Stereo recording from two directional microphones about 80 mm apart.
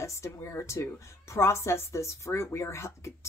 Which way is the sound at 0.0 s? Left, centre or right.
Left.